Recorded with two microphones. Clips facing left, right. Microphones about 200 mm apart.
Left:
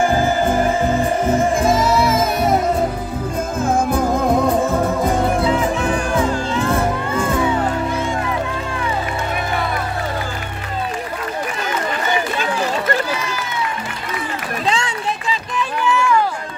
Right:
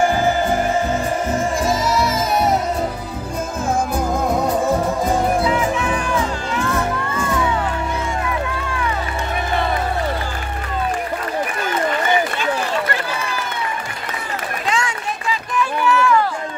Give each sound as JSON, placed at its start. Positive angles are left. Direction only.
{"t": 1.6, "sound": "music", "side_deg": 55}
{"t": 5.5, "sound": "music", "side_deg": 35}
{"t": 15.5, "sound": "rowboat", "side_deg": 15}